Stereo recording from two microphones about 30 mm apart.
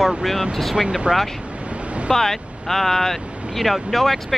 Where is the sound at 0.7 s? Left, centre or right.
Centre.